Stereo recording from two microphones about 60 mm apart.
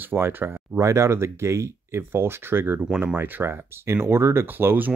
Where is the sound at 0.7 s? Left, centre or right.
Right.